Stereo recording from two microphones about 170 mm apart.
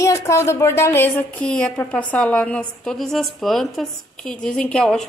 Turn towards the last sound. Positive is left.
turn(degrees=5)  # may be behind; listen again after turning